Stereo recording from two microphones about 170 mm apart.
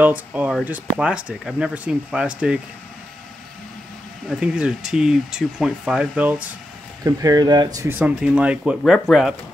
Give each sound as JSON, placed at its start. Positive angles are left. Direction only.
{"t": 0.0, "sound": "speech", "side_deg": -10}
{"t": 4.3, "sound": "speech", "side_deg": -5}
{"t": 7.1, "sound": "speech", "side_deg": -20}
{"t": 8.0, "sound": "speech", "side_deg": -5}